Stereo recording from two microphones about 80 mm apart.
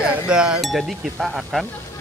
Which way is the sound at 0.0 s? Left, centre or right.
Centre.